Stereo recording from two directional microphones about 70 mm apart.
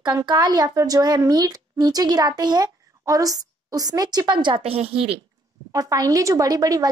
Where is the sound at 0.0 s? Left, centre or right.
Right.